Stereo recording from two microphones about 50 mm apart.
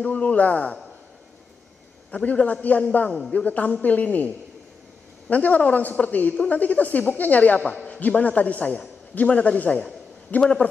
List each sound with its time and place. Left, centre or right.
0.0 s a man's voice: left
2.0 s a man's voice: left
5.3 s a woman's voice: left
7.8 s a sound: left
8.2 s a woman's voice: left